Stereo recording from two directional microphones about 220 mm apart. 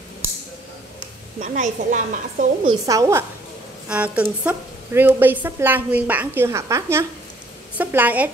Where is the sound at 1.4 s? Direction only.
35° right (ahead or behind).